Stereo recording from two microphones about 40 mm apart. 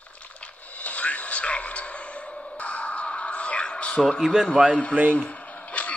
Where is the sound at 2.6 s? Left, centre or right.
Left.